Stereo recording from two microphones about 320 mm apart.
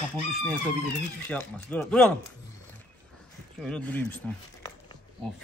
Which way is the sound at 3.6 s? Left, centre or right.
Centre.